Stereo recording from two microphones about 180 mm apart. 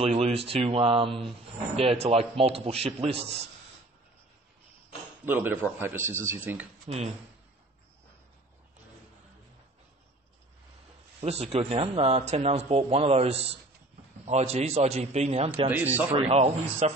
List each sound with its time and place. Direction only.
0.0 s speech: 35° right (ahead or behind)
5.2 s a man's voice: 10° right (ahead or behind)
11.1 s speech: 35° right (ahead or behind)
15.7 s a man's voice: 10° right (ahead or behind)
16.1 s speech: 35° right (ahead or behind)